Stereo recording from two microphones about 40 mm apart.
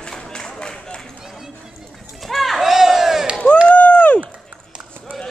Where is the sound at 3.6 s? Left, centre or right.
Left.